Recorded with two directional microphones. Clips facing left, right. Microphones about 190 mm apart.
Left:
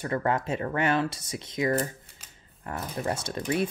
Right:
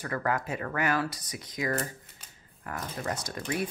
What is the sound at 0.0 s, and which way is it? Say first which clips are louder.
Speech: left 3 dB; 25° left (ahead or behind).